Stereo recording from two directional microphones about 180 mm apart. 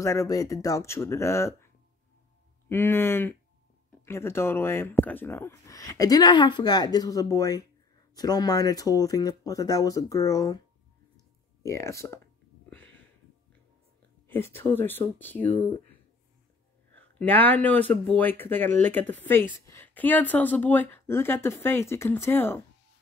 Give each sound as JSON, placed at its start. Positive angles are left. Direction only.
{"t": 0.0, "sound": "speech", "side_deg": 15}
{"t": 2.7, "sound": "speech", "side_deg": 10}
{"t": 11.6, "sound": "speech", "side_deg": 15}
{"t": 12.6, "sound": "a sound", "side_deg": 10}
{"t": 14.2, "sound": "speech", "side_deg": 10}
{"t": 16.9, "sound": "speech", "side_deg": 10}